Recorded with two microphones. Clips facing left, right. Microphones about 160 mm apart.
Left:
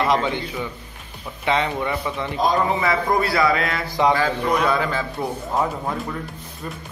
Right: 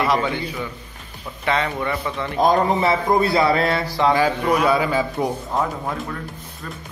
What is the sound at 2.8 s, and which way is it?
A man's voice, 25° right (ahead or behind).